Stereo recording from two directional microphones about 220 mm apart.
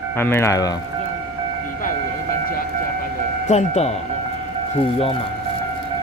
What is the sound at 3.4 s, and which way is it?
Speech, 30° left (ahead or behind).